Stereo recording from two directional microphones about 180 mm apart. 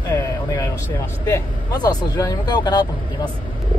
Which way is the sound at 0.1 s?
20° left (ahead or behind).